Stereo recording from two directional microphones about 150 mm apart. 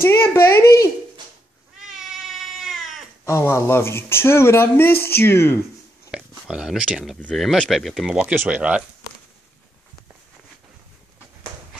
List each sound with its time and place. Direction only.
0.0 s speech: 15° left (ahead or behind)
1.8 s cat: centre (ahead or behind)
3.3 s speech: 20° left (ahead or behind)
6.1 s speech: 5° right (ahead or behind)
7.2 s speech: 5° left (ahead or behind)